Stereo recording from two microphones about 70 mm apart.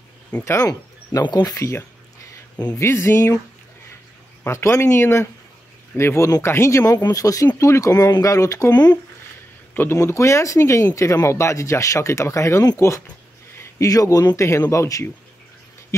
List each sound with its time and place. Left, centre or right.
0.5 s speech: left
1.2 s speech: left
2.7 s speech: left
4.5 s speech: left
6.8 s speech: left
8.7 s speech: left
9.9 s speech: left
14.3 s speech: left